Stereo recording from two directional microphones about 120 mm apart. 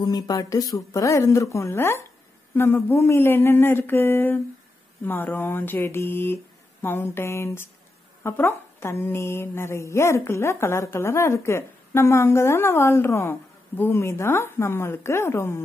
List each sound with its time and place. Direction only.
0.0 s speech: 30° left (ahead or behind)